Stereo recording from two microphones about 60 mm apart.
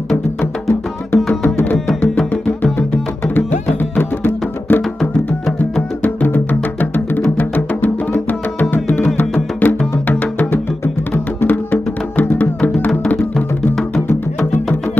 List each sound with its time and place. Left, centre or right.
0.4 s music: left
4.2 s music: left
13.9 s music: left